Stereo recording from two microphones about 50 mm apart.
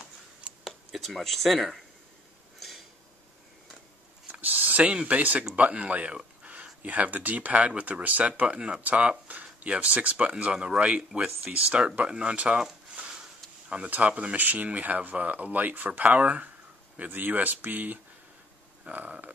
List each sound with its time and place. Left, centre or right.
0.7 s speech: centre
4.3 s a sound: right
5.0 s speech: right
8.8 s speech: right
12.9 s a sound: right
13.8 s speech: right